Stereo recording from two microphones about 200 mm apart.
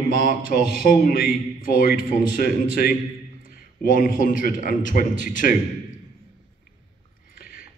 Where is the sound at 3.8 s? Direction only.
40° left (ahead or behind).